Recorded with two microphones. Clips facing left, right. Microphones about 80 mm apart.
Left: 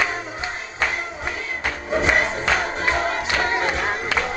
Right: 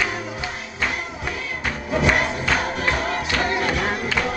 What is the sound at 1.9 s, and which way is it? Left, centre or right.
Crowd, left.